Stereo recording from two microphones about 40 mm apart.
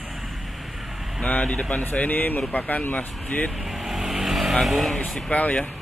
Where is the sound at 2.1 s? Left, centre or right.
Left.